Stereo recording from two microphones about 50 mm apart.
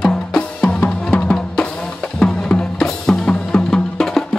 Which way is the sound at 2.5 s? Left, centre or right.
Left.